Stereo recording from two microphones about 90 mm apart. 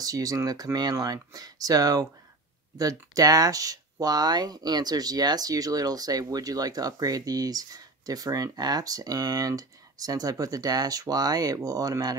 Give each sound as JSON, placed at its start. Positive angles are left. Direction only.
{"t": 0.0, "sound": "speech", "side_deg": -40}